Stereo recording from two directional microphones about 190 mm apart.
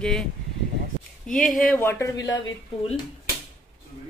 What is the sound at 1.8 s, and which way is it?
Speech, 15° left (ahead or behind).